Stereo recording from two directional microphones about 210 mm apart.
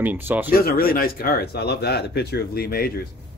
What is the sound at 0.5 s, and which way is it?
Speech, 45° left (ahead or behind).